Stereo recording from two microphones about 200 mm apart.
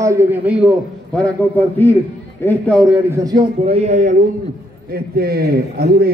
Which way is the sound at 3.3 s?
25° right (ahead or behind).